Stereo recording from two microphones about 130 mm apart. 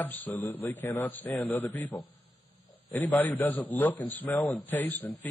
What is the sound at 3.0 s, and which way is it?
A man's voice, 10° left (ahead or behind).